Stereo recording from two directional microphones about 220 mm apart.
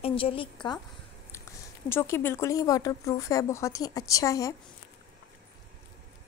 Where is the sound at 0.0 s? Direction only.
25° left (ahead or behind).